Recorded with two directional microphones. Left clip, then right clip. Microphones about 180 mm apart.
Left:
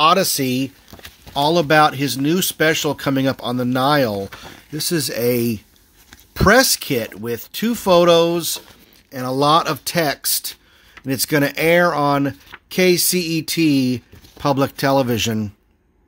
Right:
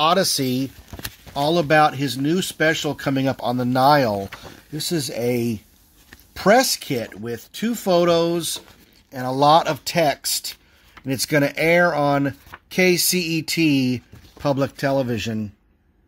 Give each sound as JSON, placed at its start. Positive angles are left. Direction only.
{"t": 0.0, "sound": "speech", "side_deg": 15}